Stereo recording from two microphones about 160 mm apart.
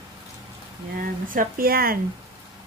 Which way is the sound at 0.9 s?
60° right (ahead or behind).